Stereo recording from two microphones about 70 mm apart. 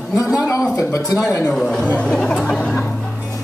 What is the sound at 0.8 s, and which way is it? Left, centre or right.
Speech, left.